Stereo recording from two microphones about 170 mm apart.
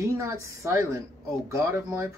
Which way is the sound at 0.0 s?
15° right (ahead or behind).